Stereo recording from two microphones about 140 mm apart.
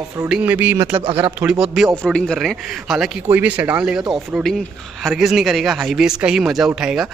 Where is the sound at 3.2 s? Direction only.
15° right (ahead or behind).